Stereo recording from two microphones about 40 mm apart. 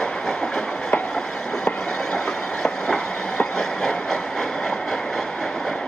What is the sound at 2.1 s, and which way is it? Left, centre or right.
Vehicle, centre.